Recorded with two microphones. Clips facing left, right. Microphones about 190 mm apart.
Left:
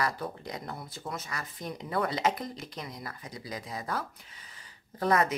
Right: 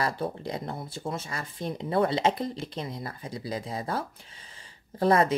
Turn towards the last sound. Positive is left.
turn(degrees=-30)  # may be behind; listen again after turning